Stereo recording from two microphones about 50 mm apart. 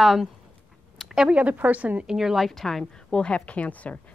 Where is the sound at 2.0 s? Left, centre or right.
Centre.